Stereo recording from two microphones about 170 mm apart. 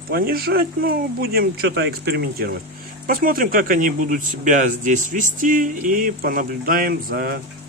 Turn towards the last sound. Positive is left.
turn(degrees=-65)  # may be behind; listen again after turning